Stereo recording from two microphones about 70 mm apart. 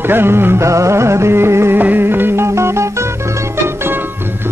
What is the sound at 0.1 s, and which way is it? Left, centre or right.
Music, right.